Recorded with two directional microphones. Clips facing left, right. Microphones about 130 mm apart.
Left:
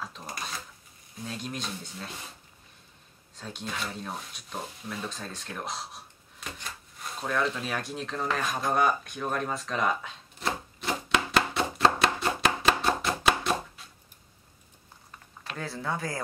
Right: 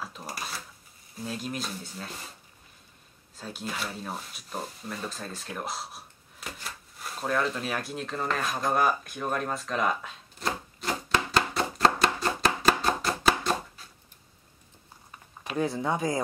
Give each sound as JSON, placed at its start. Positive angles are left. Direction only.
{"t": 0.0, "sound": "speech", "side_deg": -5}
{"t": 3.3, "sound": "speech", "side_deg": -5}
{"t": 11.5, "sound": "chopping", "side_deg": 0}
{"t": 15.0, "sound": "a sound", "side_deg": -15}